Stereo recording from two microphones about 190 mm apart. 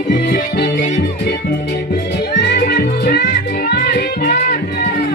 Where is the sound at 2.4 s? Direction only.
55° left (ahead or behind).